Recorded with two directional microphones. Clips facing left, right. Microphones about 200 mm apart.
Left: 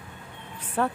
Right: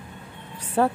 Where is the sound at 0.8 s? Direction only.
30° right (ahead or behind).